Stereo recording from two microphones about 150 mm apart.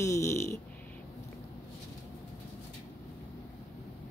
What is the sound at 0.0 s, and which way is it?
Snoring, 20° left (ahead or behind).